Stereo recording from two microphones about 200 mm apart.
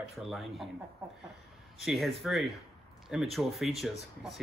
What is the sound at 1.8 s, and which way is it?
Speech, centre (ahead or behind).